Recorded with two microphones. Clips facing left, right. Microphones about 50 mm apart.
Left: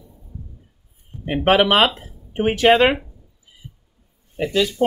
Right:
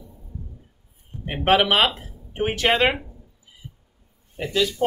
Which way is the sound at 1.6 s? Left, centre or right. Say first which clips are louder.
Left 4 dB; centre.